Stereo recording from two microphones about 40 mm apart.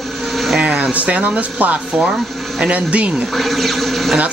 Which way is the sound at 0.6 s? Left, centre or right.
Right.